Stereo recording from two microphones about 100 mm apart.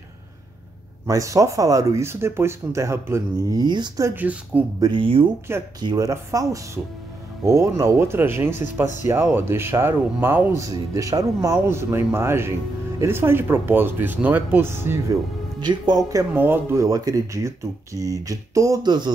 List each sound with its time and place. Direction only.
1.0 s speech: 35° right (ahead or behind)
3.5 s speech: 45° right (ahead or behind)
4.1 s speech: 15° right (ahead or behind)
4.7 s speech: 45° right (ahead or behind)
5.0 s speech: 60° right (ahead or behind)
5.8 s speech: 40° right (ahead or behind); by 10.6 s 20° right (ahead or behind)
10.6 s speech: 35° right (ahead or behind)
15.6 s speech: 45° right (ahead or behind)
16.3 s speech: 20° right (ahead or behind); by 19.1 s 45° right (ahead or behind)